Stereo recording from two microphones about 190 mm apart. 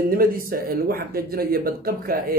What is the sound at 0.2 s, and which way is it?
Speech, 50° right (ahead or behind).